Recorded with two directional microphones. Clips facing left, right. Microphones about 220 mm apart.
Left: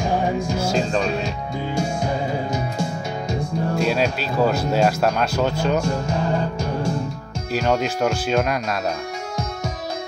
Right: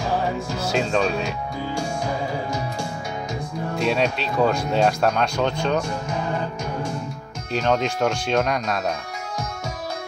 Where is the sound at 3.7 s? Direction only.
Centre (ahead or behind).